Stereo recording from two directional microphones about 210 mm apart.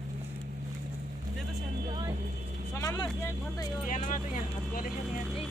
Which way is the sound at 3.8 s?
40° left (ahead or behind).